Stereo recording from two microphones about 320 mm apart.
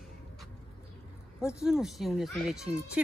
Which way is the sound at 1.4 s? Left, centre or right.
Centre.